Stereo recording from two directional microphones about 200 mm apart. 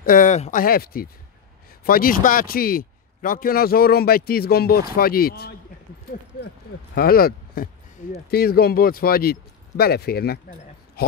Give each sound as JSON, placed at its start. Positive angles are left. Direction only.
{"t": 0.0, "sound": "speech", "side_deg": 45}
{"t": 7.0, "sound": "speech", "side_deg": 50}
{"t": 11.0, "sound": "a sound", "side_deg": 50}